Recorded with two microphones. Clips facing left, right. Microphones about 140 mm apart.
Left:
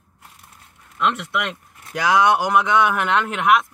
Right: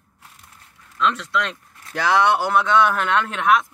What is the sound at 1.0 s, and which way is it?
Speech, 20° left (ahead or behind).